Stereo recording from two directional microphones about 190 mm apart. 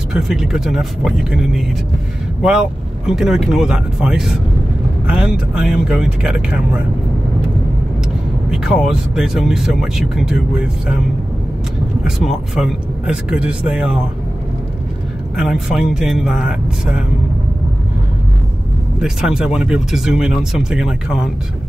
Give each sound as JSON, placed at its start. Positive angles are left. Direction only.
{"t": 0.1, "sound": "speech", "side_deg": -5}
{"t": 8.5, "sound": "speech", "side_deg": -5}
{"t": 12.0, "sound": "speech", "side_deg": -5}
{"t": 15.3, "sound": "speech", "side_deg": -5}
{"t": 18.9, "sound": "speech", "side_deg": -5}